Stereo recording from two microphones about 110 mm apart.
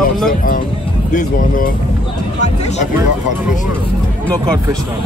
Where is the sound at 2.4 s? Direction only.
90° left.